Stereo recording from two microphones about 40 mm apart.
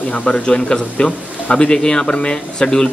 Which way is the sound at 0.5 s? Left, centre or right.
Left.